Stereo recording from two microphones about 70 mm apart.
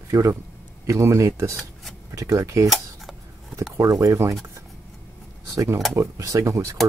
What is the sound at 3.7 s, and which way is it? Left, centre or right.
Speech, right.